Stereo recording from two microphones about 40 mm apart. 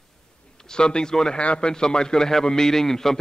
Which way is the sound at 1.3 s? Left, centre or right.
Left.